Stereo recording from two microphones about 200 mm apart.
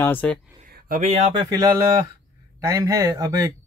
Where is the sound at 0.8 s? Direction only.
40° right (ahead or behind).